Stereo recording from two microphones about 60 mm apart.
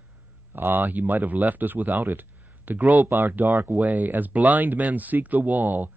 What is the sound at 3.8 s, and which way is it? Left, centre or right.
Speech, right.